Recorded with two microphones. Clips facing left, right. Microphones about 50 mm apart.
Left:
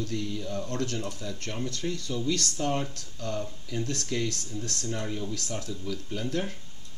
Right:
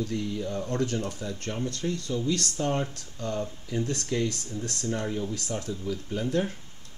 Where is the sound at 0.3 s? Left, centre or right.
Right.